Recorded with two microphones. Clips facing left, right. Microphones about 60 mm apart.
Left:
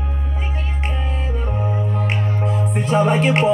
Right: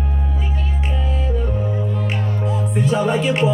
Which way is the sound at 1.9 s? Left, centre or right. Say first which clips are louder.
Left 1 dB; left.